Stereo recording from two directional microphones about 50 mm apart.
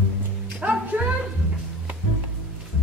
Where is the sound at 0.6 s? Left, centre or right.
Right.